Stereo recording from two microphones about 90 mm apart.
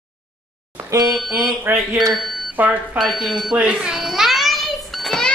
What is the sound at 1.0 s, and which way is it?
Speech, centre (ahead or behind).